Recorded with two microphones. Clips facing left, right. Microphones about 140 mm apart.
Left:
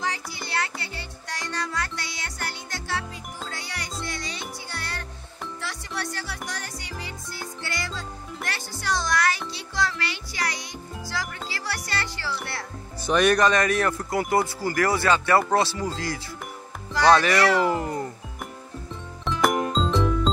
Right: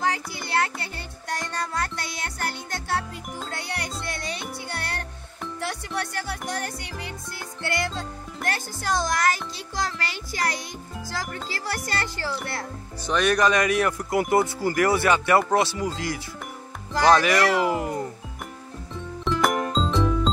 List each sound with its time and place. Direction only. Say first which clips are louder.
0.0 s music: right 4 dB; 50° right (ahead or behind)
13.0 s speech: left 2 dB; 5° left (ahead or behind); by 15.9 s 15° right (ahead or behind)
17.2 s speech: even; 10° right (ahead or behind)
19.2 s music: even; centre (ahead or behind)